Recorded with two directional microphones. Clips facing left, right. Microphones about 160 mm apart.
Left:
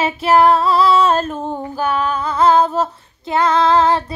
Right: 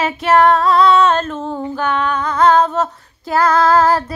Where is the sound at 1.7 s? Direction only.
35° left (ahead or behind).